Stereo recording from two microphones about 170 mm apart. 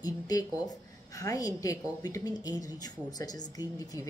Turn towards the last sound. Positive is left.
turn(degrees=20)  # may be behind; listen again after turning